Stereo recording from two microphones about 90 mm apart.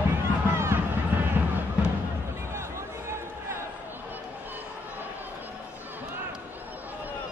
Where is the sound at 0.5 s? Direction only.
30° right (ahead or behind).